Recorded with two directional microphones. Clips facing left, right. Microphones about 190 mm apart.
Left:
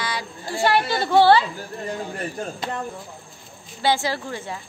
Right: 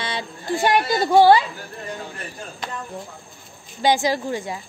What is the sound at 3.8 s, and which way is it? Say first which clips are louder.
Speech: right 3 dB; 15° right (ahead or behind).